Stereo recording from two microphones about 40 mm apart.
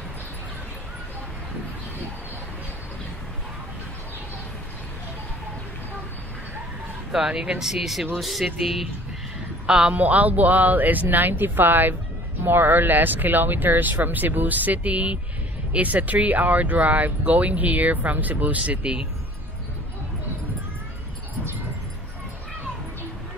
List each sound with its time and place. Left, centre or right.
7.1 s speech: centre
9.7 s a man's voice: right
9.9 s speech: right
15.8 s speech: right